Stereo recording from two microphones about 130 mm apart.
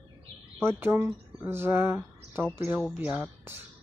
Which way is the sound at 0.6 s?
20° right (ahead or behind).